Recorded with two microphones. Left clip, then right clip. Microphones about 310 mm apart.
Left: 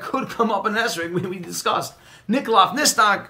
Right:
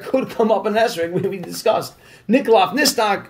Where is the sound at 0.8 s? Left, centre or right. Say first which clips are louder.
Right 4 dB; left.